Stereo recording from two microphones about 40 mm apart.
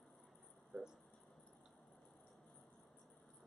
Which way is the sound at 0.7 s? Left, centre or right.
Centre.